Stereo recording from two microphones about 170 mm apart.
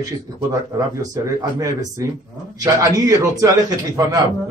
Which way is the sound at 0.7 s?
20° right (ahead or behind).